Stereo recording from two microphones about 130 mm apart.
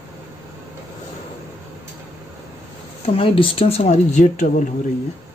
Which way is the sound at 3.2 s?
45° left (ahead or behind).